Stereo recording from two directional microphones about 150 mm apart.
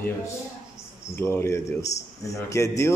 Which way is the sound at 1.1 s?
15° left (ahead or behind).